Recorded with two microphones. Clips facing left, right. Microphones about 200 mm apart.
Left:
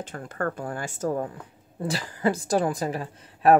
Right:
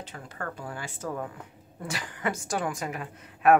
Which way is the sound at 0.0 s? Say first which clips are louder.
Left 8 dB; 50° left (ahead or behind).